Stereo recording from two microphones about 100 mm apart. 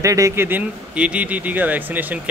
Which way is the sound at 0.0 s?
30° right (ahead or behind).